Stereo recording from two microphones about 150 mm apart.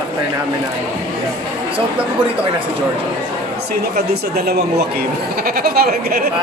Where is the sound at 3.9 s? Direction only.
90° right.